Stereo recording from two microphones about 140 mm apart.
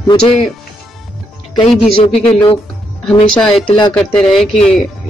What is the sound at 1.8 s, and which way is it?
Speech, 40° left (ahead or behind).